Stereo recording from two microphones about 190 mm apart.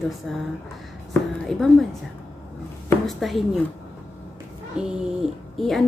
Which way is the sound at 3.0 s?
Centre (ahead or behind).